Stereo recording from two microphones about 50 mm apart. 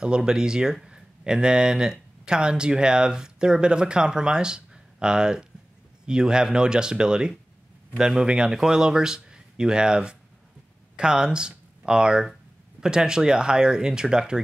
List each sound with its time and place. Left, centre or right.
0.0 s speech: centre